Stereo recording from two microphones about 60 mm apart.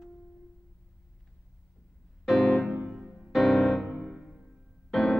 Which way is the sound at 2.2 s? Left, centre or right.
Centre.